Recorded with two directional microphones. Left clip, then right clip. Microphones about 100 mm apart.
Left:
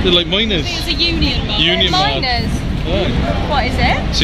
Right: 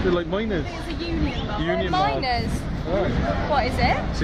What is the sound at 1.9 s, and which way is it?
Speech, 25° right (ahead or behind).